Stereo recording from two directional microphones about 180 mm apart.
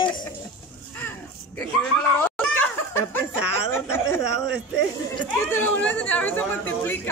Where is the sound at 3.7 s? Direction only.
15° left (ahead or behind).